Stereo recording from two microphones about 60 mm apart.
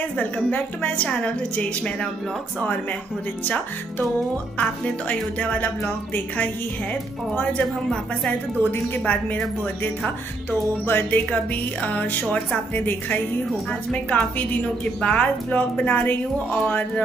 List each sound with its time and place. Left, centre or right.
0.5 s a woman's voice: left
4.6 s a woman's voice: left
8.6 s a woman's voice: left